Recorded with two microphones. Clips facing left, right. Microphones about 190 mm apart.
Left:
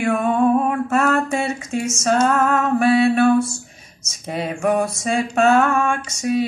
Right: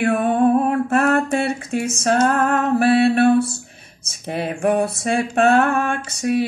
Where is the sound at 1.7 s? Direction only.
60° right (ahead or behind).